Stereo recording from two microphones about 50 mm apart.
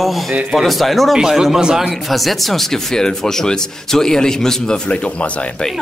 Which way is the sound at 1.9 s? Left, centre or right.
Centre.